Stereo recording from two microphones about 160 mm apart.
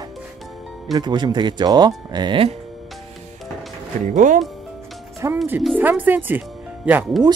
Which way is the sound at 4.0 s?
55° right (ahead or behind).